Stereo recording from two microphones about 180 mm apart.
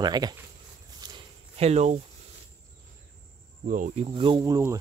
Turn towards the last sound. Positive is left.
turn(degrees=-15)  # may be behind; listen again after turning